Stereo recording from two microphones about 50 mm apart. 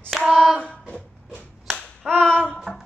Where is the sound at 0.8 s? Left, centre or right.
Left.